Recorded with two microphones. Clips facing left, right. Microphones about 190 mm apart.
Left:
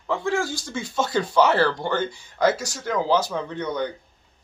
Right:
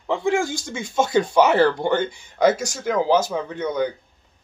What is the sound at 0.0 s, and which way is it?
Speech, 20° right (ahead or behind).